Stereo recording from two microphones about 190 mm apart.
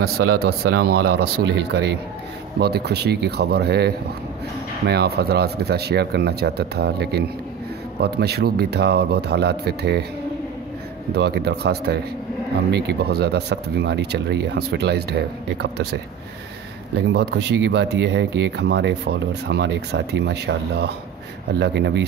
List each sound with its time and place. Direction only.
0.0 s speech: 55° right (ahead or behind)
11.1 s speech: 60° right (ahead or behind)
17.1 s speech: 60° right (ahead or behind)